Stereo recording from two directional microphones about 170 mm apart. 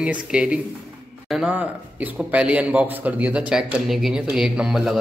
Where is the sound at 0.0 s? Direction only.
5° right (ahead or behind).